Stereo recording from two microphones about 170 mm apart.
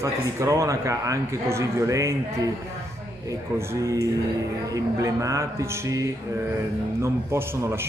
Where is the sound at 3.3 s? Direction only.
20° right (ahead or behind).